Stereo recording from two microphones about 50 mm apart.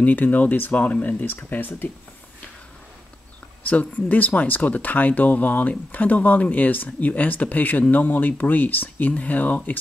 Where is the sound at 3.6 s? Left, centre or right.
Left.